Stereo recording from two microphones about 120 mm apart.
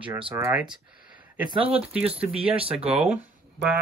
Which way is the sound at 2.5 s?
50° right (ahead or behind).